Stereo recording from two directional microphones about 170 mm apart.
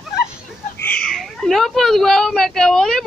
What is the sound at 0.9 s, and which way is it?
Speech, 5° left (ahead or behind).